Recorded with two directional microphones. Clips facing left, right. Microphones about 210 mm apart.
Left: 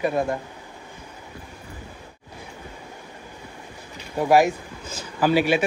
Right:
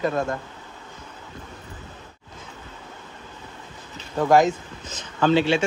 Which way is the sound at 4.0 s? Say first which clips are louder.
Even; 10° left (ahead or behind).